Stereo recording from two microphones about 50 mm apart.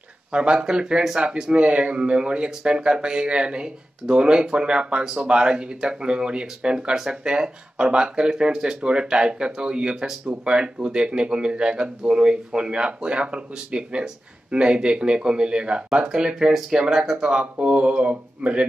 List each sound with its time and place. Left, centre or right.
0.3 s speech: right